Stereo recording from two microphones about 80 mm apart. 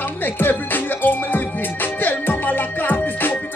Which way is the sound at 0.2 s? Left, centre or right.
Left.